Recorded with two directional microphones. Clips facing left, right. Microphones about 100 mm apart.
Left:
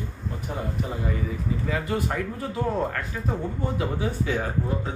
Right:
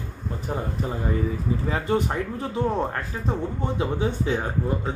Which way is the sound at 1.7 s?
30° right (ahead or behind).